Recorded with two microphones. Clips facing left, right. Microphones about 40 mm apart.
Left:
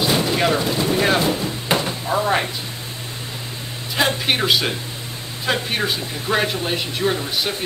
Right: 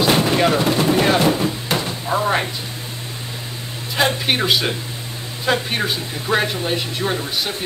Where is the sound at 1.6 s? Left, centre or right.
Centre.